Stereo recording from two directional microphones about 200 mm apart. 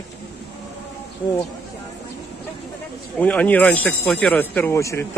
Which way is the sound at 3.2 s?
5° left (ahead or behind).